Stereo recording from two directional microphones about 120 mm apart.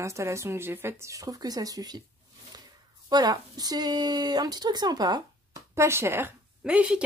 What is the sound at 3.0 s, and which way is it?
Speech, 35° right (ahead or behind).